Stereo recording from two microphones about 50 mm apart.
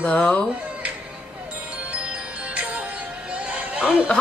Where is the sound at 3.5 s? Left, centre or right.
Right.